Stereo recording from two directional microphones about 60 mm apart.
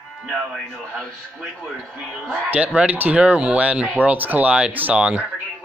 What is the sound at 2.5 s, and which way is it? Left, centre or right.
A man's voice, right.